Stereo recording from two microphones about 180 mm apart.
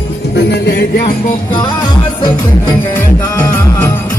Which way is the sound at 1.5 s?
25° left (ahead or behind).